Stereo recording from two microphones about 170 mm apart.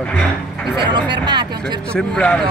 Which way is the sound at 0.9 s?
25° right (ahead or behind).